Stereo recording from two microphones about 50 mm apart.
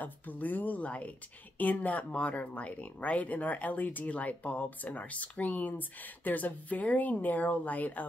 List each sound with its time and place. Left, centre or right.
0.0 s speech: left